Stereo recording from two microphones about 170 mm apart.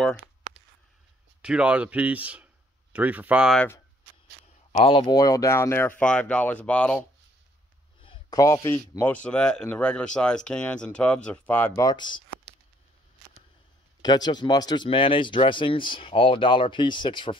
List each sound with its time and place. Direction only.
1.4 s speech: 5° right (ahead or behind)
3.5 s speech: 15° left (ahead or behind)
4.7 s speech: 35° left (ahead or behind); by 7.1 s 5° left (ahead or behind)
8.0 s speech: 25° left (ahead or behind)
14.0 s speech: 25° left (ahead or behind)